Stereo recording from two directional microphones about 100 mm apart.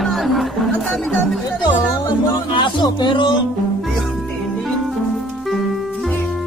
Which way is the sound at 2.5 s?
50° left (ahead or behind).